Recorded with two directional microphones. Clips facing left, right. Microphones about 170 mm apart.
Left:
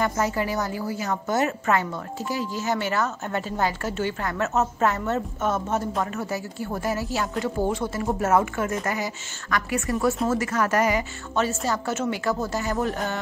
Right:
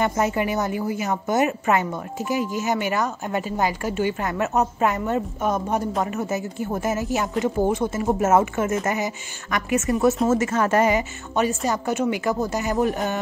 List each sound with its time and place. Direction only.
0.0 s a woman's voice: 20° right (ahead or behind)